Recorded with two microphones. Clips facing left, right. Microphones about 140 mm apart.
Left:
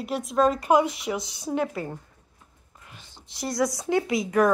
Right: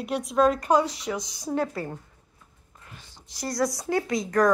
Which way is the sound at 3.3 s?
25° left (ahead or behind).